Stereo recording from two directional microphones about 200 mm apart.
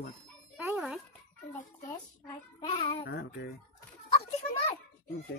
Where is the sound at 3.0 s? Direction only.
55° left (ahead or behind).